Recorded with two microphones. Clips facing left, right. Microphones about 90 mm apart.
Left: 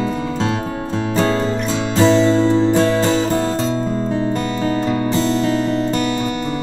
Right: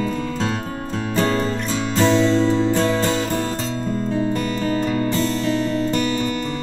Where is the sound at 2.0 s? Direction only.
10° left (ahead or behind).